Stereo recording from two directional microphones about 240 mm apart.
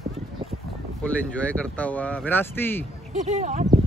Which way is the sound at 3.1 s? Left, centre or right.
Right.